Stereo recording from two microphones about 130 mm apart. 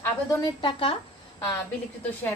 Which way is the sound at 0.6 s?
45° left (ahead or behind).